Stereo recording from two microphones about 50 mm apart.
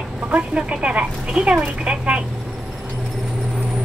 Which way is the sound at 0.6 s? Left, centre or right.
Right.